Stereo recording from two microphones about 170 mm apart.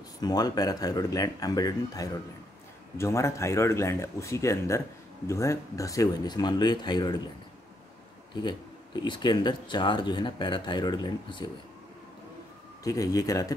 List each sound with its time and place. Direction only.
0.2 s speech: 25° left (ahead or behind)
8.4 s speech: 25° left (ahead or behind)
12.8 s speech: 20° left (ahead or behind)